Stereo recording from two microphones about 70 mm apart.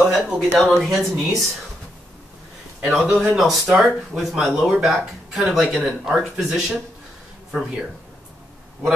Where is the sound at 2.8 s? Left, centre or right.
Centre.